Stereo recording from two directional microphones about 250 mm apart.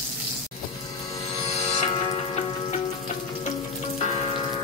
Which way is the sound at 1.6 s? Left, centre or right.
Left.